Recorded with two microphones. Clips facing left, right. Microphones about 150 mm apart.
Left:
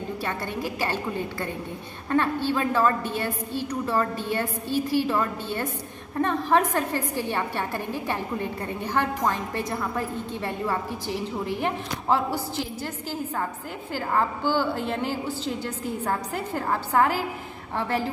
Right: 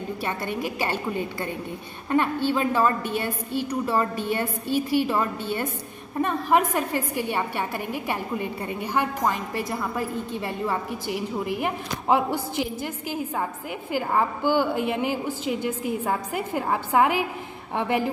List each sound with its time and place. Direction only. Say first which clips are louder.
0.2 s a woman's voice: right 3 dB; 15° right (ahead or behind)